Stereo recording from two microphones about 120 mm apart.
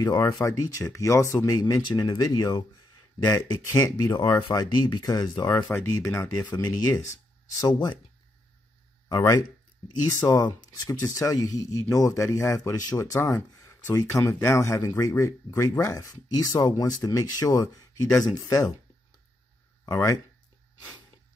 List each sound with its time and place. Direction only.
0.4 s speech: 30° left (ahead or behind)
5.5 s speech: 20° left (ahead or behind)
9.1 s speech: 25° left (ahead or behind)
19.9 s speech: 30° left (ahead or behind)